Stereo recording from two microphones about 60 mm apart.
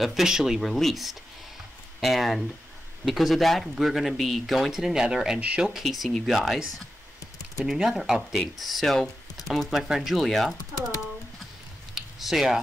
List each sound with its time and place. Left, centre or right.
0.0 s speech: centre
0.6 s speech: centre
5.4 s speech: right
5.7 s speech: centre
9.7 s speech: centre
10.7 s speech: right
11.9 s a sound: centre